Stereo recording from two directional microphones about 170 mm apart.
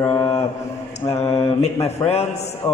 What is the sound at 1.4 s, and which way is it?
Speech, 35° left (ahead or behind).